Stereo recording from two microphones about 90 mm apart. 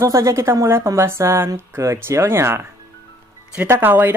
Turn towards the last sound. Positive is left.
turn(degrees=-20)  # may be behind; listen again after turning